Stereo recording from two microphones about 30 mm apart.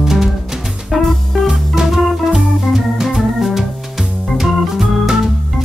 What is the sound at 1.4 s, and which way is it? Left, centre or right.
Organ, centre.